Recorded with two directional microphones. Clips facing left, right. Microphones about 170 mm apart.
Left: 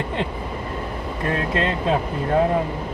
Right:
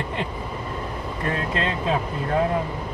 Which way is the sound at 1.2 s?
25° left (ahead or behind).